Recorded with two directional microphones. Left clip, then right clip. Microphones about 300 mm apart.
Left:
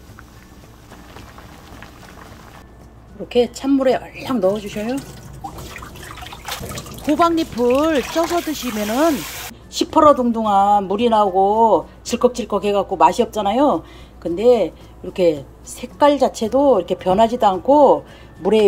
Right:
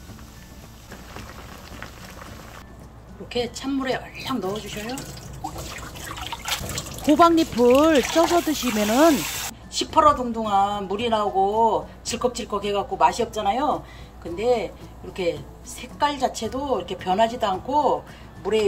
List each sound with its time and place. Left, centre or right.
3.3 s a woman's voice: left
7.1 s speech: centre
9.7 s a woman's voice: centre
15.8 s a woman's voice: centre